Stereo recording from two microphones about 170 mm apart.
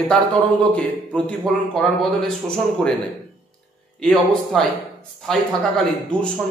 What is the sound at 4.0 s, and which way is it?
Speech, centre (ahead or behind).